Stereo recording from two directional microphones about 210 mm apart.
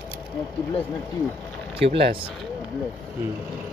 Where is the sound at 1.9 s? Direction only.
50° right (ahead or behind).